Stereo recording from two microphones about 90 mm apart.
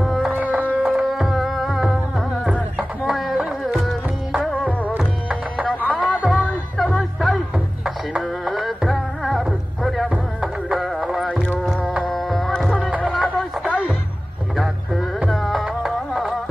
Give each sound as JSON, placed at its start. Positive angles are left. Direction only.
{"t": 0.0, "sound": "music", "side_deg": 0}
{"t": 0.3, "sound": "music", "side_deg": -20}
{"t": 2.8, "sound": "a sound", "side_deg": -15}
{"t": 3.3, "sound": "music", "side_deg": -10}
{"t": 4.9, "sound": "music", "side_deg": -15}
{"t": 6.8, "sound": "music", "side_deg": 0}
{"t": 11.6, "sound": "carnatic music", "side_deg": 5}
{"t": 12.1, "sound": "music", "side_deg": 0}
{"t": 13.7, "sound": "music", "side_deg": -15}
{"t": 14.6, "sound": "music", "side_deg": 0}